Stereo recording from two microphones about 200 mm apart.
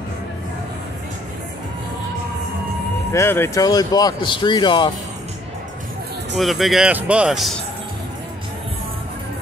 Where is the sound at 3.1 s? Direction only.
15° left (ahead or behind).